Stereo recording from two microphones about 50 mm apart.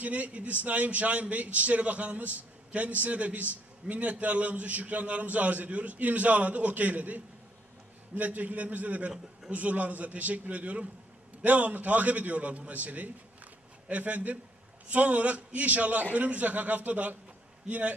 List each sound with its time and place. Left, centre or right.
0.0 s a man's voice: right
8.2 s a man's voice: right